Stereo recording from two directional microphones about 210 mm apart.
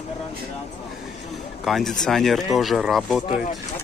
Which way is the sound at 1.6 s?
Centre (ahead or behind).